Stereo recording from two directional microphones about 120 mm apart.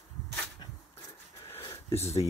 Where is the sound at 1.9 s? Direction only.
60° left (ahead or behind).